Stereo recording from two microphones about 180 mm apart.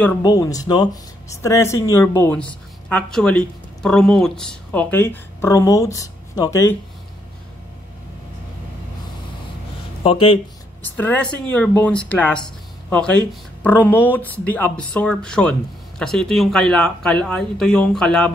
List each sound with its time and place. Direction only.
0.2 s speech: 20° left (ahead or behind)
10.0 s speech: 30° left (ahead or behind)
10.8 s speech: 10° left (ahead or behind)